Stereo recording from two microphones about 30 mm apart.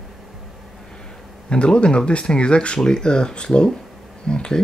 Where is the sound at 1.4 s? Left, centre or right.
Left.